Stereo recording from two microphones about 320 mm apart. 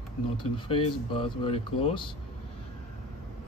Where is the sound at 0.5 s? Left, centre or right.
Centre.